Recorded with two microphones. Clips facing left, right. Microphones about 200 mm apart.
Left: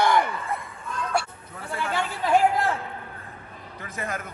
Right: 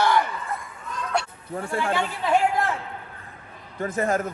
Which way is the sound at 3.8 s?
50° right (ahead or behind).